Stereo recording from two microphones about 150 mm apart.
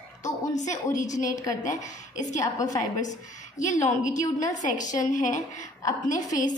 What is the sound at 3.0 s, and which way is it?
A woman's voice, 55° left (ahead or behind).